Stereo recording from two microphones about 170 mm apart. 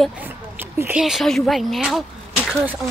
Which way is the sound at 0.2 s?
10° right (ahead or behind).